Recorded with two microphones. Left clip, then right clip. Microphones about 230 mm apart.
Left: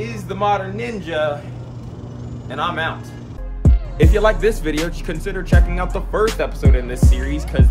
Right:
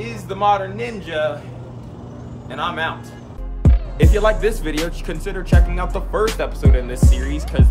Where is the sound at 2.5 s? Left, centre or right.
Centre.